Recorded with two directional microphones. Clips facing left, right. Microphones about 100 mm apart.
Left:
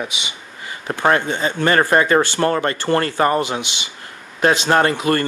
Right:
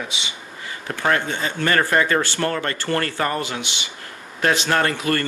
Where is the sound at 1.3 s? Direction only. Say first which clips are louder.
Left 4 dB; 25° left (ahead or behind).